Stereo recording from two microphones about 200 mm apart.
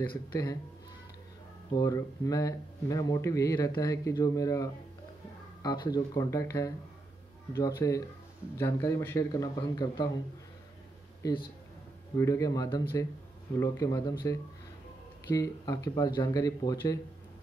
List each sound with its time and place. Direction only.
0.1 s speech: 15° left (ahead or behind)
1.8 s speech: 15° left (ahead or behind)
11.2 s speech: 20° left (ahead or behind)